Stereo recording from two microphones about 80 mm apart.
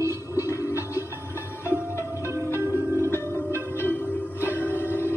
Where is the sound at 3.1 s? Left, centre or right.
Left.